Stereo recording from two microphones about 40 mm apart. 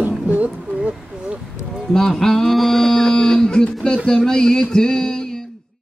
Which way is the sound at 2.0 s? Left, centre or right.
Centre.